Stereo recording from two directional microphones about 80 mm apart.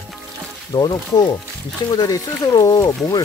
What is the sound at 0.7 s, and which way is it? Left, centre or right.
Speech, left.